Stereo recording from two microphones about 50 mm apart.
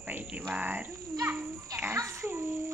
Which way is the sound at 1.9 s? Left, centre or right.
Right.